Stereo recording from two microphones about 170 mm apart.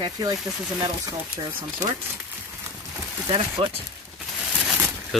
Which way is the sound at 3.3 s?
30° right (ahead or behind).